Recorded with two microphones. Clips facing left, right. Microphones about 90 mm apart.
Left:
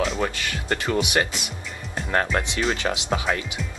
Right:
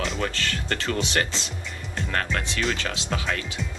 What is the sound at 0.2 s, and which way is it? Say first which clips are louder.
Speech: left 2 dB; 15° left (ahead or behind).